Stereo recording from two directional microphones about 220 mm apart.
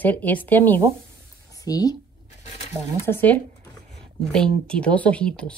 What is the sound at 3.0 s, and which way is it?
Speech, 10° left (ahead or behind).